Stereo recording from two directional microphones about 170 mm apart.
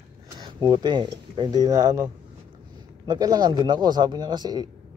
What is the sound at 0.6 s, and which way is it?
A man's voice, 25° right (ahead or behind).